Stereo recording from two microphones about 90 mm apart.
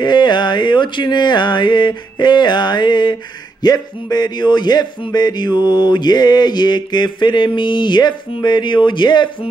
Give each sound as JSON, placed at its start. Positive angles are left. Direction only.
{"t": 0.0, "sound": "mantra", "side_deg": 55}
{"t": 3.6, "sound": "speech", "side_deg": 50}
{"t": 5.1, "sound": "mantra", "side_deg": 50}